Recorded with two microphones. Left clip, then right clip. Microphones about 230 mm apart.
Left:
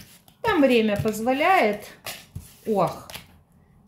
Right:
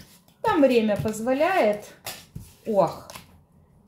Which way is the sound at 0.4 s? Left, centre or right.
Left.